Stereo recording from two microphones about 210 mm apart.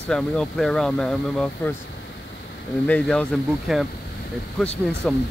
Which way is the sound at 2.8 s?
5° left (ahead or behind).